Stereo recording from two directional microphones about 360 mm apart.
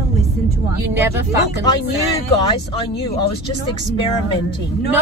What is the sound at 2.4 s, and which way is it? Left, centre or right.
Speech, centre.